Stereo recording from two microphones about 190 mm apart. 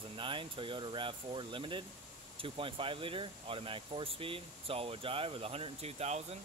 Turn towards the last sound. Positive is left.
turn(degrees=-35)  # may be behind; listen again after turning